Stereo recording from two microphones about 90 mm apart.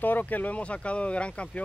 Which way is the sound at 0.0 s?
20° left (ahead or behind).